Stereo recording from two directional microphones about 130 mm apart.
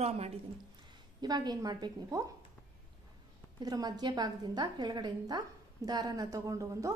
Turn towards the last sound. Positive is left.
turn(degrees=-25)  # may be behind; listen again after turning